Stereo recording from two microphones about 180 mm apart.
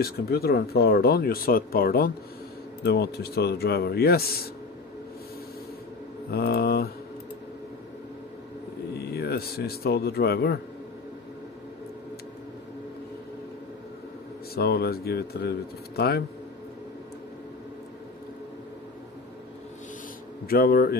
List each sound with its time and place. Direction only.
0.0 s speech: 60° left (ahead or behind)
6.3 s speech: 60° left (ahead or behind)
8.9 s speech: 60° left (ahead or behind)
14.5 s speech: 60° left (ahead or behind)
20.4 s speech: 55° left (ahead or behind)